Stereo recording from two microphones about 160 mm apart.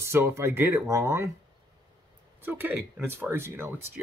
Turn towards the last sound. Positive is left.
turn(degrees=-15)  # may be behind; listen again after turning